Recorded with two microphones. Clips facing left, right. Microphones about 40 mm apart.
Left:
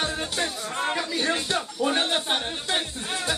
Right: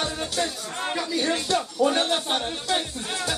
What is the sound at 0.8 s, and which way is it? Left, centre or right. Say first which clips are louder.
Speech: right 1 dB; centre.